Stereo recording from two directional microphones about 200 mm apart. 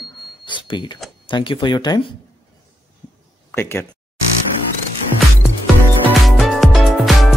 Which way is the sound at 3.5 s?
10° left (ahead or behind).